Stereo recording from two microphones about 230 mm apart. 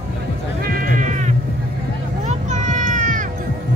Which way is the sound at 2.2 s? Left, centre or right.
Right.